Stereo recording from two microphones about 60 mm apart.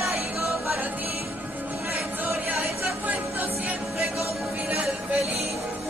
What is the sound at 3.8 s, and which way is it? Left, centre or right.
Music, centre.